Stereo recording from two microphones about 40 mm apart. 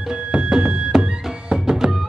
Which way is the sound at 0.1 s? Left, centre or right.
Right.